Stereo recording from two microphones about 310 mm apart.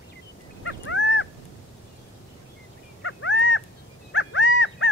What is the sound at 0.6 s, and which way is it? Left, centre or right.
Dog, left.